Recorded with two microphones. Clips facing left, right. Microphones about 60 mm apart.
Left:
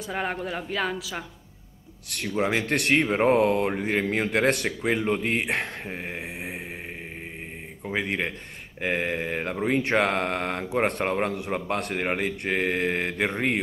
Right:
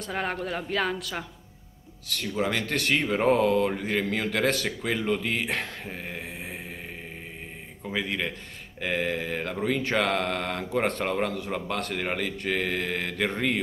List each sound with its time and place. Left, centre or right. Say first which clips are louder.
0.0 s speech: left 1 dB; centre
2.1 s speech: left 2 dB; left
6.2 s mantra: left 3 dB; centre
7.9 s speech: left 2 dB; left